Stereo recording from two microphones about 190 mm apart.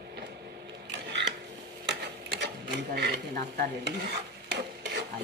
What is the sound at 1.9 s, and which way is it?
Sewing machine, 60° right (ahead or behind).